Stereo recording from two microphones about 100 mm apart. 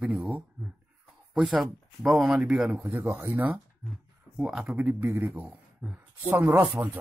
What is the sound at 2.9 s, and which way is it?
A man's voice, 25° right (ahead or behind).